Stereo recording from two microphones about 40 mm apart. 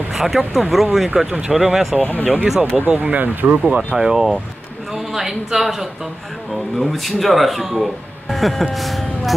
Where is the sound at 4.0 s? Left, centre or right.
Centre.